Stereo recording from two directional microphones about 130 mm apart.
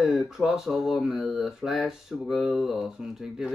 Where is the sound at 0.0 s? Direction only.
5° right (ahead or behind).